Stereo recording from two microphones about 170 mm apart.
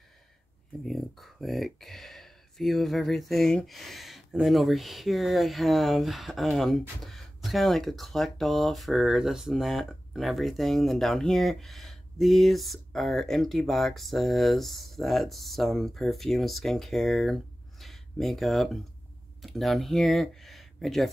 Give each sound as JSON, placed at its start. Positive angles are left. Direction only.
{"t": 0.8, "sound": "speech", "side_deg": 0}